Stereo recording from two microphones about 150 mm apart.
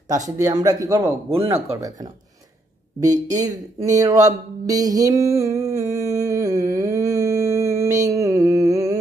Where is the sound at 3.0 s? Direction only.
55° right (ahead or behind).